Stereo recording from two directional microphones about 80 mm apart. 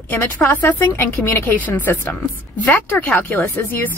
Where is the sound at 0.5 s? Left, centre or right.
Left.